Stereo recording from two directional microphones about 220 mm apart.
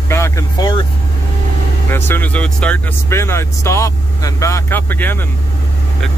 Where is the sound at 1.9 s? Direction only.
10° left (ahead or behind).